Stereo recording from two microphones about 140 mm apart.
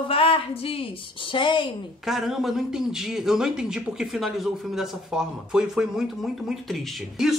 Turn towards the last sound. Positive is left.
turn(degrees=-5)  # may be behind; listen again after turning